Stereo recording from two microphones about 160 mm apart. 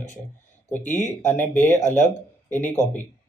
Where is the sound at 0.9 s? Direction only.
10° left (ahead or behind).